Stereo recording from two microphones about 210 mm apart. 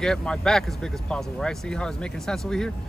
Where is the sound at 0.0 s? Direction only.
5° left (ahead or behind).